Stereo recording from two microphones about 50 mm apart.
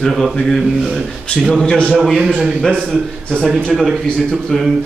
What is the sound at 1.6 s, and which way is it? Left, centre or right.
Speech, centre.